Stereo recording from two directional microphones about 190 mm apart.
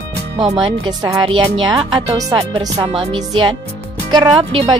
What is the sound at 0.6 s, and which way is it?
Speech, 20° right (ahead or behind).